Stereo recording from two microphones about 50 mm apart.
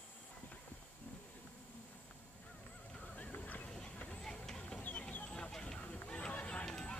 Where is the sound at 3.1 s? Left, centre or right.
Left.